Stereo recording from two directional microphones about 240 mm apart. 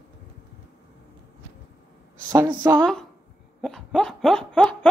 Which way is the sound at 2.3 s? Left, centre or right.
Centre.